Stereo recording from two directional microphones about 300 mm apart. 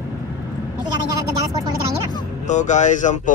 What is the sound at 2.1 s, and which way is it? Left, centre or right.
Speech, centre.